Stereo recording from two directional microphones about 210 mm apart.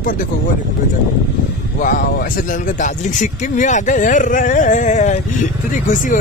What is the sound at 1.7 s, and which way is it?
Speech, 40° left (ahead or behind).